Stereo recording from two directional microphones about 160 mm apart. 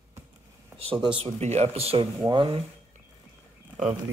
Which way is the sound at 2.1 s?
25° right (ahead or behind).